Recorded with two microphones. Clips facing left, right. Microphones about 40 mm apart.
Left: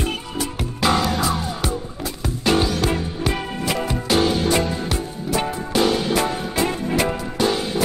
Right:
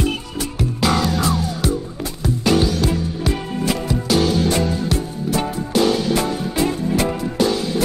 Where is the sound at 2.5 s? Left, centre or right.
Left.